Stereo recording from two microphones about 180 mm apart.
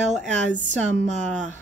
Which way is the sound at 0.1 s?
45° right (ahead or behind).